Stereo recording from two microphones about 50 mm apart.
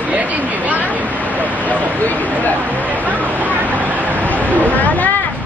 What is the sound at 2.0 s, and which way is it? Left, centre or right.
Speech, left.